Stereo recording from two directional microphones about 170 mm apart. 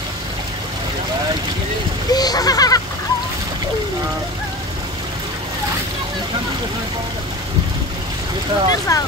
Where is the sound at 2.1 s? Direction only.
20° left (ahead or behind).